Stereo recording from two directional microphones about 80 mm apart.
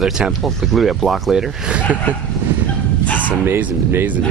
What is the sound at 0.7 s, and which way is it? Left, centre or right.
Speech, centre.